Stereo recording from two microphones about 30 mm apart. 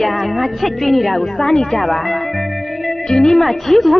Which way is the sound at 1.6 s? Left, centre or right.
Centre.